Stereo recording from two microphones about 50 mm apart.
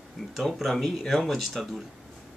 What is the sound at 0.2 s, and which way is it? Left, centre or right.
Speech, centre.